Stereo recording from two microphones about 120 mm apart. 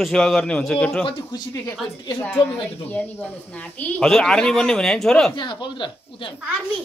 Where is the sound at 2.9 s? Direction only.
10° left (ahead or behind).